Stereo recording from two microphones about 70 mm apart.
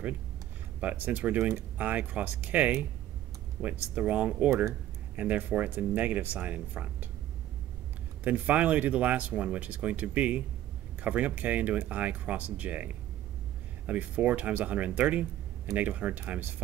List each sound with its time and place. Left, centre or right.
0.7 s speech: right
8.2 s speech: right